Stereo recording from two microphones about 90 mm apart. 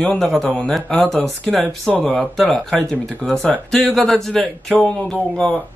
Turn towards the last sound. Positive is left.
turn(degrees=10)  # may be behind; listen again after turning